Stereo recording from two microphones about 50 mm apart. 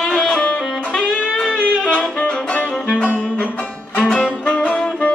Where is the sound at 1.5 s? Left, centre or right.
Left.